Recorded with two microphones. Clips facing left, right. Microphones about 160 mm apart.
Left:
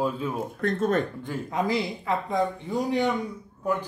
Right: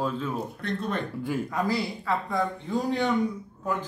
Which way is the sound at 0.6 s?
45° left (ahead or behind).